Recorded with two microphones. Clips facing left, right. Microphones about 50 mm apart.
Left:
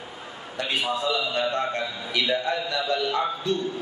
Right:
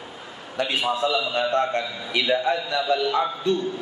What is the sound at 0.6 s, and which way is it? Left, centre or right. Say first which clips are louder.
Speech: right 3 dB; right.